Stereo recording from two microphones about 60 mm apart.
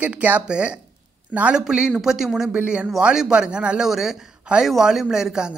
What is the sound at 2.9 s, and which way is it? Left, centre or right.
Speech, centre.